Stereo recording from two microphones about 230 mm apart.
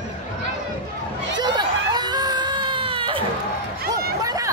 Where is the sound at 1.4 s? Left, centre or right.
Centre.